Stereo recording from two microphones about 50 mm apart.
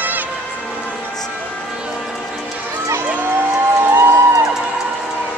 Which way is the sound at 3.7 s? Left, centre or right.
Right.